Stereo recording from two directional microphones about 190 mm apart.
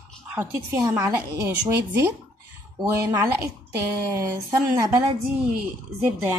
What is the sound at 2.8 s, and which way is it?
Speech, 15° right (ahead or behind).